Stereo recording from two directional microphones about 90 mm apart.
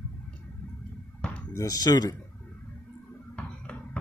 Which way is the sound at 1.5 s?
40° left (ahead or behind).